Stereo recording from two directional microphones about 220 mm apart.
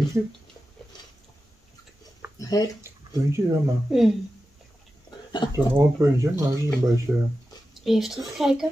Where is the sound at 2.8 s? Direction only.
10° right (ahead or behind).